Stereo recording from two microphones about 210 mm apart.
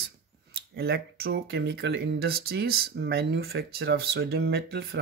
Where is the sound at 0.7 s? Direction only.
45° right (ahead or behind).